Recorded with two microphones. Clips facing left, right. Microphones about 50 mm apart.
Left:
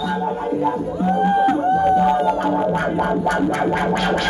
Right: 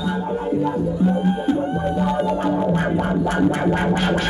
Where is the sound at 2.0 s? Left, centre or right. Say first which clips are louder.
Left 4 dB; left.